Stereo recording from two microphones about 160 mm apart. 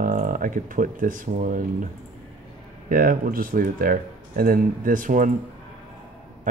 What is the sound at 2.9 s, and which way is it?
Speech, 65° right (ahead or behind).